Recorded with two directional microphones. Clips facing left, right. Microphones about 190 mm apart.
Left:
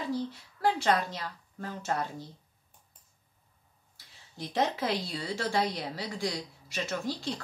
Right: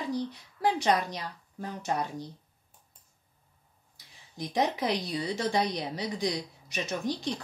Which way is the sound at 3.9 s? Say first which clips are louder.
Right 3 dB; 15° right (ahead or behind).